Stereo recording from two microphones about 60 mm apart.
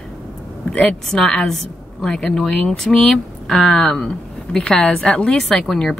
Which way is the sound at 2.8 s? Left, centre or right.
Centre.